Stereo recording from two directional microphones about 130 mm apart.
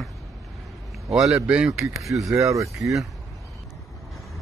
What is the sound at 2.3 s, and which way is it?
Speech, 25° right (ahead or behind).